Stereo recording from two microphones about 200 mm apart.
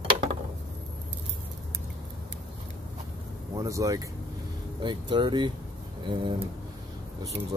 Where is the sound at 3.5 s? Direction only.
15° right (ahead or behind).